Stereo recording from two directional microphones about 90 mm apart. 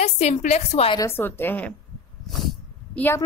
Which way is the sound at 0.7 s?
90° left.